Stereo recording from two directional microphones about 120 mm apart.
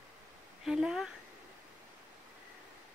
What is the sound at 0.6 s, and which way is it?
Speech, 5° right (ahead or behind).